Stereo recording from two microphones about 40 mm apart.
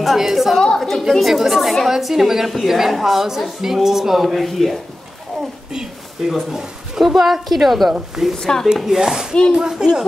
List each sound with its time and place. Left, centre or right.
0.0 s a woman's voice: centre
0.7 s a sound: centre
1.2 s a woman's voice: centre
5.7 s a sound: centre
6.5 s a woman's voice: centre
8.4 s speech: centre
8.7 s speech: centre